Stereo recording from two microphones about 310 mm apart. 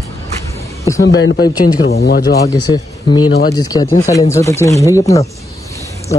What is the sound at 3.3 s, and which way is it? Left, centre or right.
Speech, left.